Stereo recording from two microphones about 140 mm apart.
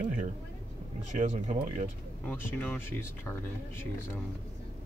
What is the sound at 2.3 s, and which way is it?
Speech, 15° left (ahead or behind).